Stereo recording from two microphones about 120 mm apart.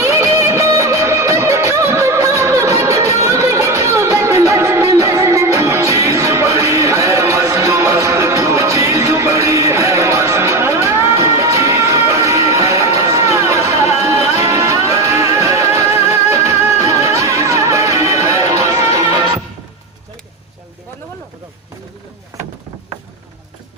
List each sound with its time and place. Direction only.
0.0 s music: 25° right (ahead or behind)
19.1 s music: 40° right (ahead or behind)